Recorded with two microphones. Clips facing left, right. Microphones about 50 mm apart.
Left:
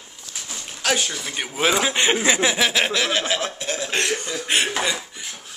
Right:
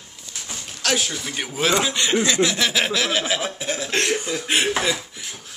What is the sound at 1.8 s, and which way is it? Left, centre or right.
Speech, left.